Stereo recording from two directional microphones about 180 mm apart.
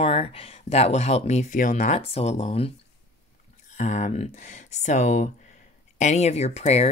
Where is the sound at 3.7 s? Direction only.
45° left (ahead or behind).